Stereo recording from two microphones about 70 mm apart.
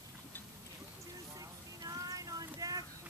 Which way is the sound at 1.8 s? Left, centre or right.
Right.